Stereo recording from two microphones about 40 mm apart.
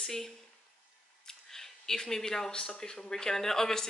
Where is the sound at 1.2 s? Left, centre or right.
Centre.